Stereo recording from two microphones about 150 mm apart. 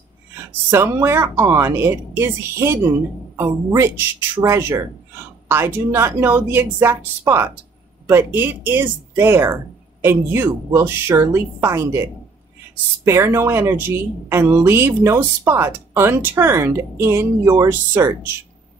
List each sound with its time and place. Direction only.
0.7 s a woman's voice: 15° right (ahead or behind)